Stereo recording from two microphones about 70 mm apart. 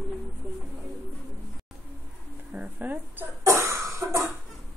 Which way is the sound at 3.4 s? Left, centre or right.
Right.